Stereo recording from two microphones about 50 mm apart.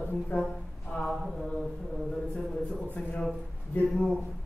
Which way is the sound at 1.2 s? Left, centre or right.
Centre.